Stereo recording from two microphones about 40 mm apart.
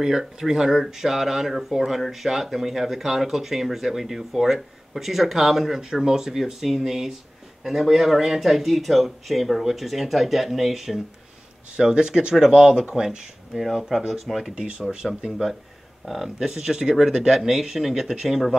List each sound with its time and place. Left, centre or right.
0.0 s speech: centre
11.7 s speech: right
13.5 s speech: centre
14.5 s speech: centre
16.3 s speech: centre